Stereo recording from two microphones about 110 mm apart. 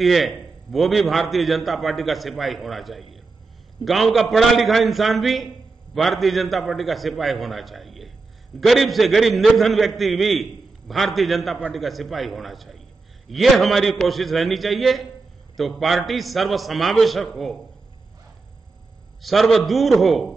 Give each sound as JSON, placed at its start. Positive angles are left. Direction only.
{"t": 0.0, "sound": "a man's voice", "side_deg": 0}
{"t": 19.2, "sound": "a man's voice", "side_deg": 0}